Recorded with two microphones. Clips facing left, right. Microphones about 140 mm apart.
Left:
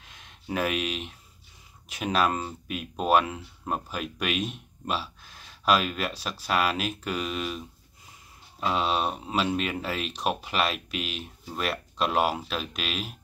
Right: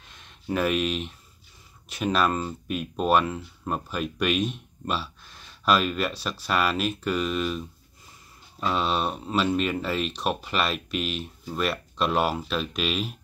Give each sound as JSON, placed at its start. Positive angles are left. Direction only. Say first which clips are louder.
{"t": 0.1, "sound": "speech", "louder": "right 3 dB", "side_deg": 5}